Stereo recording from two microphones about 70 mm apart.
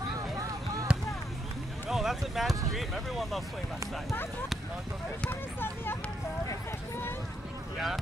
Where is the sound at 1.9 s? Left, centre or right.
Centre.